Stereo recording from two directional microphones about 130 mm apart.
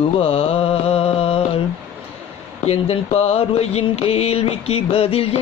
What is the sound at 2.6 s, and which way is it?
Music, 55° left (ahead or behind).